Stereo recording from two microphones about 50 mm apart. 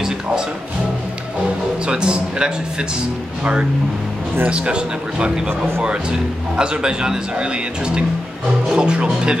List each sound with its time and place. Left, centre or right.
1.9 s speech: centre
4.5 s speech: centre
6.5 s a man's voice: centre
8.6 s speech: centre